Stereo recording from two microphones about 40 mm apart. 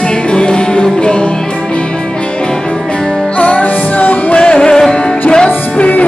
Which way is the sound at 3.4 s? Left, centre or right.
Left.